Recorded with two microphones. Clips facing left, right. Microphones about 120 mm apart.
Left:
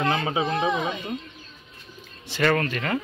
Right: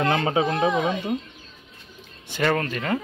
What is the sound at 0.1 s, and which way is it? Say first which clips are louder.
Speech: right 3 dB; 40° right (ahead or behind).